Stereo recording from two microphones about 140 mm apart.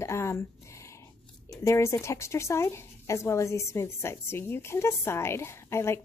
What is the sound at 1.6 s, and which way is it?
A woman's voice, 20° left (ahead or behind).